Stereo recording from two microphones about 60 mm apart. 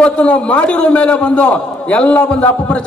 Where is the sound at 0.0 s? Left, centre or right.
Centre.